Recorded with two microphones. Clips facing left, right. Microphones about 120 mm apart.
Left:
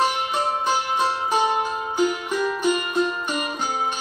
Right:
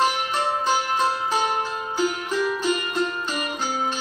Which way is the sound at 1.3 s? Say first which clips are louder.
Left 3 dB; 20° left (ahead or behind).